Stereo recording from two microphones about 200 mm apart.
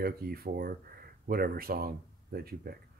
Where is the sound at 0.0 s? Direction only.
50° right (ahead or behind).